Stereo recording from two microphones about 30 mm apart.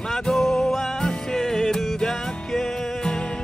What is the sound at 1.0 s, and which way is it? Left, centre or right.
Music, left.